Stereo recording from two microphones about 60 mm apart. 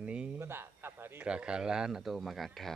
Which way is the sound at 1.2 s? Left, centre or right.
Centre.